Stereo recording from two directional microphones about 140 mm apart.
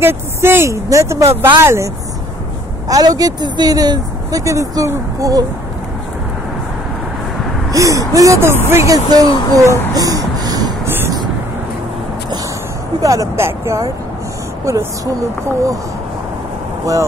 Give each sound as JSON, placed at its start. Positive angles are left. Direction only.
{"t": 0.0, "sound": "speech", "side_deg": -15}
{"t": 2.9, "sound": "speech", "side_deg": -25}
{"t": 7.7, "sound": "speech", "side_deg": -25}
{"t": 9.9, "sound": "a sound", "side_deg": -25}
{"t": 10.9, "sound": "a sound", "side_deg": -15}
{"t": 13.0, "sound": "speech", "side_deg": -25}